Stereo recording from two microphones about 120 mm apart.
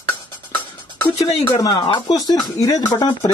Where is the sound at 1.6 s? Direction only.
35° left (ahead or behind).